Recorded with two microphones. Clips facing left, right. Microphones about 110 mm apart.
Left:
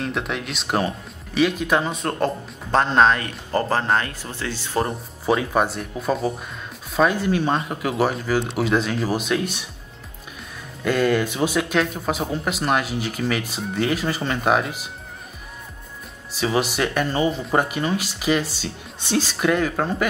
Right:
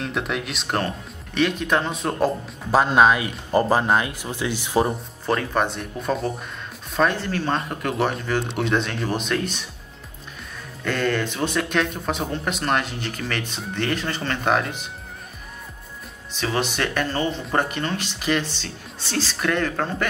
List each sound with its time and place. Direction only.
0.0 s speech: centre (ahead or behind)
5.2 s speech: 10° left (ahead or behind)
10.8 s speech: 10° left (ahead or behind)
16.3 s speech: 5° left (ahead or behind)